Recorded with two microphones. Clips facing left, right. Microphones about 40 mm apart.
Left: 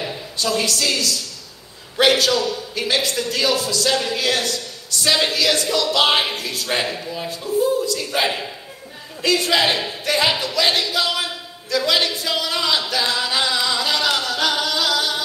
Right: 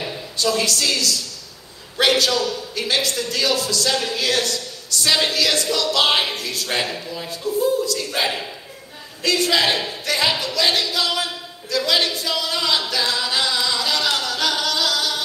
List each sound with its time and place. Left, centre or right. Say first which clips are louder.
0.4 s speech: even; left
2.3 s speech: left 1 dB; centre
2.7 s speech: left 2 dB; left
6.7 s speech: left 2 dB; centre
7.4 s speech: left 1 dB; left
8.1 s speech: left 2 dB; centre
9.2 s speech: left 1 dB; left
10.7 s a sound: left 1 dB; left
11.7 s speech: left 1 dB; centre
12.3 s music: left 1 dB; centre
14.1 s singing: left 1 dB; left